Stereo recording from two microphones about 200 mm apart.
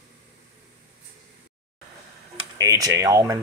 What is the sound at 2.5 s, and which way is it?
Speech, 15° right (ahead or behind).